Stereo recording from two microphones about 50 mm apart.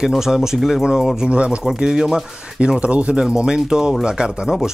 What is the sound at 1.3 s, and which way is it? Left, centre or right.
Speech, right.